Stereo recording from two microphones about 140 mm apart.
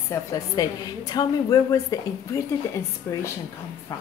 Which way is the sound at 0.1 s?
25° left (ahead or behind).